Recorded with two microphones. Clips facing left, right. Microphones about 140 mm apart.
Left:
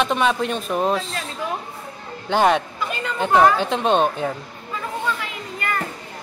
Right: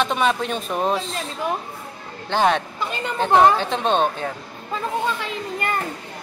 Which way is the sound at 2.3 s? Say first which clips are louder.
Left 2 dB; 5° left (ahead or behind).